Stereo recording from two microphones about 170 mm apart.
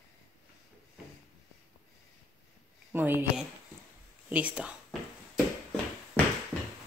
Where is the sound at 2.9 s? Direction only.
10° right (ahead or behind).